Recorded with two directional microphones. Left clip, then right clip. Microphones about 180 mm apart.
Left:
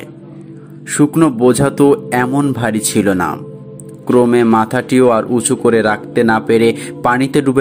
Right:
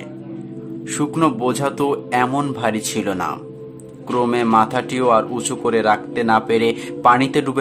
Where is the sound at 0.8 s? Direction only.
20° left (ahead or behind).